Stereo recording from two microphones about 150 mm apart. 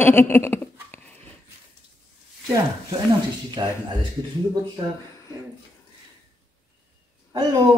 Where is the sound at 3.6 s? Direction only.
30° right (ahead or behind).